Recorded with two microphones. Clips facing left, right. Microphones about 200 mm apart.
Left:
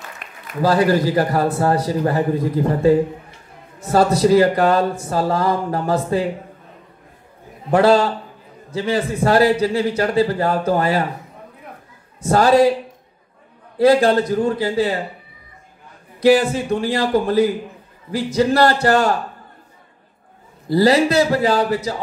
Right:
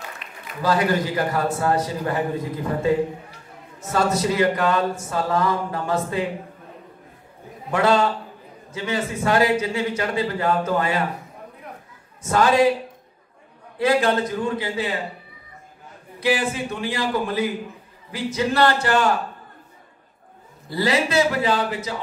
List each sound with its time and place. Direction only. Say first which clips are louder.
0.2 s a sound: left 2 dB; 50° left (ahead or behind)
0.6 s a man's voice: left 5 dB; 35° left (ahead or behind)
3.9 s a man's voice: left 8 dB; 35° left (ahead or behind)
7.7 s a man's voice: left 5 dB; 35° left (ahead or behind)
12.2 s a man's voice: left 4 dB; 35° left (ahead or behind)
13.7 s a man's voice: left 6 dB; 35° left (ahead or behind)
16.2 s a man's voice: left 8 dB; 40° left (ahead or behind)
20.7 s a man's voice: left 6 dB; 35° left (ahead or behind)